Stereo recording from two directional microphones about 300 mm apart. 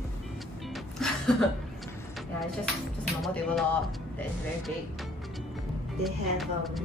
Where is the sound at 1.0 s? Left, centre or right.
Centre.